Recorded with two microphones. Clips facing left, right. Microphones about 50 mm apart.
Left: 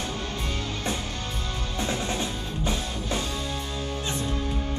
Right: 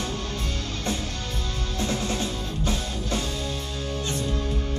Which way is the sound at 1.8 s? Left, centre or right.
Centre.